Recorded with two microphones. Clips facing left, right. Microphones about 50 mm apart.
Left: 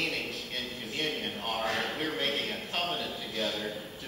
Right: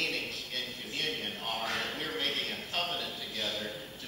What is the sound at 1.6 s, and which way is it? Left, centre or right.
Speech, left.